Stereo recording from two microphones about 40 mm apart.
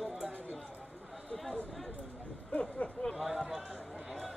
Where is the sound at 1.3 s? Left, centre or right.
Centre.